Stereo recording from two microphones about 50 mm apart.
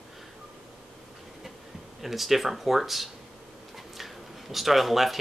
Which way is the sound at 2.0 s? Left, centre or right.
Centre.